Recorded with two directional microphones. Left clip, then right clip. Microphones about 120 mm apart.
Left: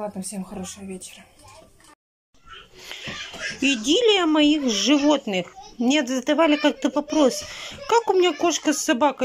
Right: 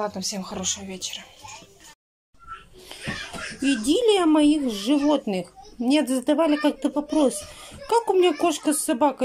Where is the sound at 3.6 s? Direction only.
10° right (ahead or behind).